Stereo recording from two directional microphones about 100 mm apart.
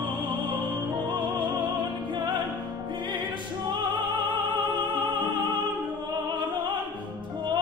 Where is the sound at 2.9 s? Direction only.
50° right (ahead or behind).